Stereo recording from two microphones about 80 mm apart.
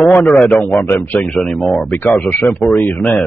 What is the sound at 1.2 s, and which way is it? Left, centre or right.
Speech, centre.